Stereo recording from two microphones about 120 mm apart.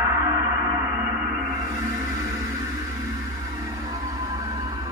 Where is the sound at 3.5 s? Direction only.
30° right (ahead or behind).